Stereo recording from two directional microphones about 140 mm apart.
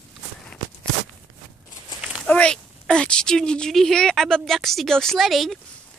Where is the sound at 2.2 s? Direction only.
10° left (ahead or behind).